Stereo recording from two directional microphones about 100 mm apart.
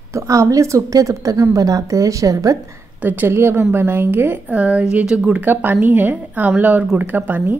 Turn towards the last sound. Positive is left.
turn(degrees=-20)  # may be behind; listen again after turning